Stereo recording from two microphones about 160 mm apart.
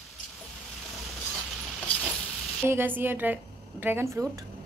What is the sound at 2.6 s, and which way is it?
A woman's voice, 15° right (ahead or behind).